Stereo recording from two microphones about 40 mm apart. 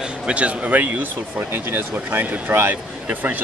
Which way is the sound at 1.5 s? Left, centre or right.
Right.